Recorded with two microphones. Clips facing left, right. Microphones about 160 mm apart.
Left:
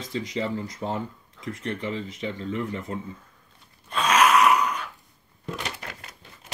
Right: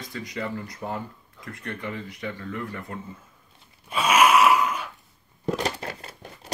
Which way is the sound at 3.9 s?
10° right (ahead or behind).